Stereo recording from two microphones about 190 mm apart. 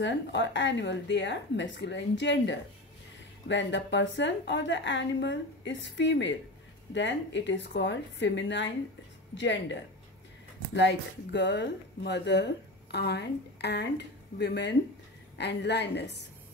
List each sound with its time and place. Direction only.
0.0 s a woman's voice: 70° left (ahead or behind)
11.3 s a woman's voice: 65° left (ahead or behind)